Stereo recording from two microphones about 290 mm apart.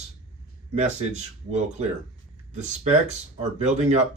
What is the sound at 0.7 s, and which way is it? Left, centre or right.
Speech, right.